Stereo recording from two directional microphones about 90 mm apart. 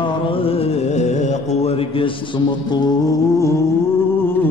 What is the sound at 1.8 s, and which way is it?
Mantra, 75° left (ahead or behind).